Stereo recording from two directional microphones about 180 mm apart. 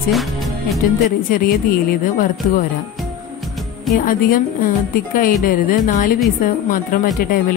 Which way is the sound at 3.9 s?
50° left (ahead or behind).